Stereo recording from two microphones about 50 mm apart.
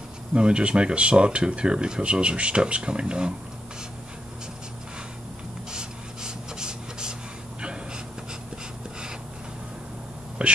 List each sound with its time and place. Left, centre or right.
0.3 s speech: centre
5.7 s filing: centre
10.4 s whispering: right